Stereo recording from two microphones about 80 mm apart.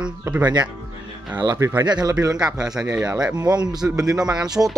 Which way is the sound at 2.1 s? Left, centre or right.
Right.